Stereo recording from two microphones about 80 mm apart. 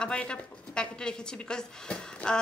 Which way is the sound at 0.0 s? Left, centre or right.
Centre.